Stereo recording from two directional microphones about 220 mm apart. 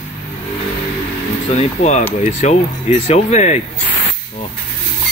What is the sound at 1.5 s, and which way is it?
Speech, 30° left (ahead or behind).